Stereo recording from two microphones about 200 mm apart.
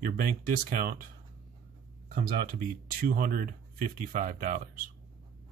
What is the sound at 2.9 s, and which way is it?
Speech, 45° right (ahead or behind).